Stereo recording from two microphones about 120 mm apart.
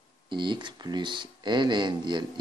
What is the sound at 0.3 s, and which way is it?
Speech, 40° right (ahead or behind).